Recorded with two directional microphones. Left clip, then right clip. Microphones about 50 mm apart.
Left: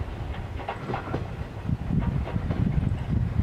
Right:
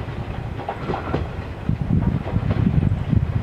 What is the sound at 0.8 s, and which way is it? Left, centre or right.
Train, centre.